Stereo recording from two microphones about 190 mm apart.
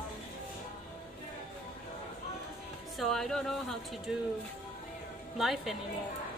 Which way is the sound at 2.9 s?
Centre (ahead or behind).